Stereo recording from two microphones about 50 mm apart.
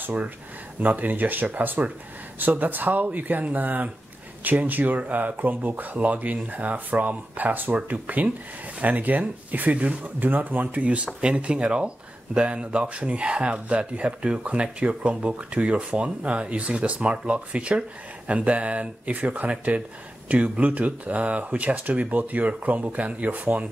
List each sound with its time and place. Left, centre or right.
0.0 s speech: right